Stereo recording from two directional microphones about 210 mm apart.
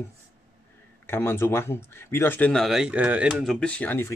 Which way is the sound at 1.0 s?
10° left (ahead or behind).